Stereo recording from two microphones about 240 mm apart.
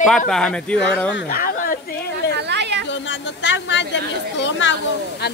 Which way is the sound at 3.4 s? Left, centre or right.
Left.